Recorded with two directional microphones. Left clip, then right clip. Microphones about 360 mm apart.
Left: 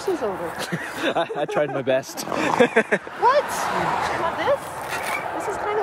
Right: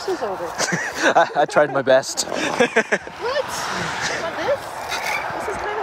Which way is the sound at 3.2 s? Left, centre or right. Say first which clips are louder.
Left 6 dB; centre.